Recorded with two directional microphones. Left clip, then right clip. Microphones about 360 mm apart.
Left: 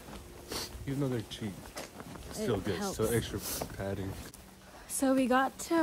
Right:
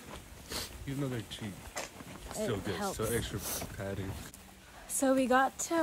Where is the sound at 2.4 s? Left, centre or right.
Centre.